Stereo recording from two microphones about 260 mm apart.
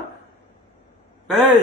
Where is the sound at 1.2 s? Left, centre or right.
Centre.